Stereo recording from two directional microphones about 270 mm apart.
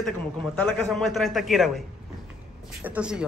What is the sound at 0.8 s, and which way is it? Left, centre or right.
Speech, centre.